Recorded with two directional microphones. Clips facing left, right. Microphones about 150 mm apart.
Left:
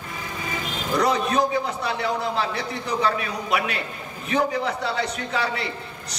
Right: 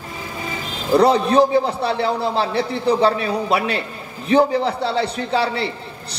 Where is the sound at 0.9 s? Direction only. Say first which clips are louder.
Right 8 dB; 30° right (ahead or behind).